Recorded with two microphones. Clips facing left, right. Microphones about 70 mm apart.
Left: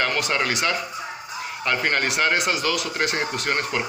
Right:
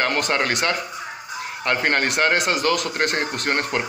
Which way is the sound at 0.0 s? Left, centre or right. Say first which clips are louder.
Right 2 dB; right.